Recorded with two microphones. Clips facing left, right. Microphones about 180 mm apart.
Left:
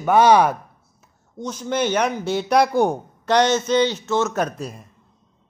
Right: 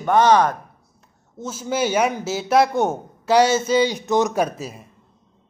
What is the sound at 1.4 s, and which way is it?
A man's voice, 5° right (ahead or behind).